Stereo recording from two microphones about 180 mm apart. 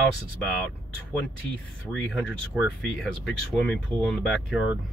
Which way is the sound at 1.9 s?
5° left (ahead or behind).